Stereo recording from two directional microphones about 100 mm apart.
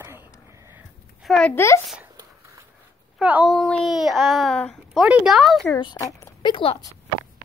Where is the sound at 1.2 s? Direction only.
Centre (ahead or behind).